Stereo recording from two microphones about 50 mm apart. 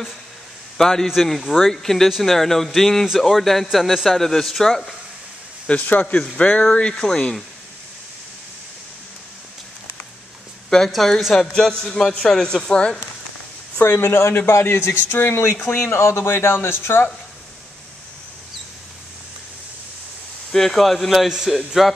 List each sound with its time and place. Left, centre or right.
0.7 s a man's voice: centre
5.7 s speech: left; by 7.3 s centre
10.7 s speech: centre
11.5 s speech: centre
13.7 s speech: left
15.5 s speech: left
15.8 s speech: left
20.5 s speech: centre